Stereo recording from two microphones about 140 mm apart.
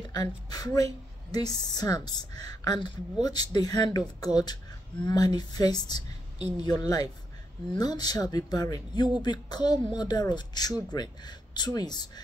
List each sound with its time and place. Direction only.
0.1 s a woman's voice: 30° left (ahead or behind)
5.0 s a woman's voice: 30° left (ahead or behind)